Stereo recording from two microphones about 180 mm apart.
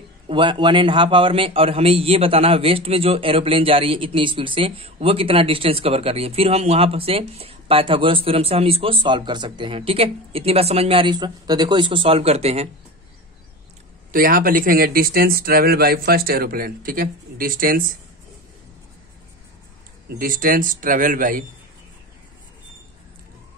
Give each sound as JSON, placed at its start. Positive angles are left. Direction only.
{"t": 0.3, "sound": "a man's voice", "side_deg": -25}
{"t": 14.1, "sound": "speech", "side_deg": -55}
{"t": 20.2, "sound": "speech", "side_deg": -50}